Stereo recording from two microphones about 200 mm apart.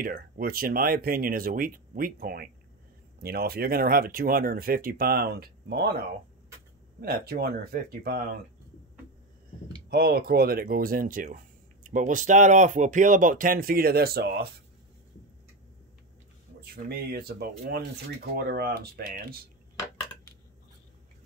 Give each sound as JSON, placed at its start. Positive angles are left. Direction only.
{"t": 0.0, "sound": "speech", "side_deg": -45}
{"t": 7.0, "sound": "speech", "side_deg": -50}
{"t": 9.8, "sound": "speech", "side_deg": -50}
{"t": 16.7, "sound": "speech", "side_deg": -50}